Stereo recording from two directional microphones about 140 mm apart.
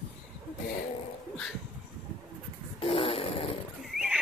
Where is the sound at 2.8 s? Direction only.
40° left (ahead or behind).